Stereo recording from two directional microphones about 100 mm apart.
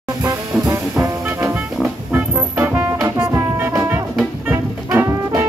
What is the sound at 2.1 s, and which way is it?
Music, 20° right (ahead or behind).